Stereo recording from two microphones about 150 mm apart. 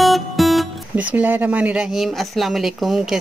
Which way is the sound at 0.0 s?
Centre (ahead or behind).